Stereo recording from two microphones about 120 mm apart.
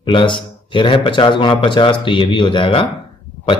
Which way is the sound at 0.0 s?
45° left (ahead or behind).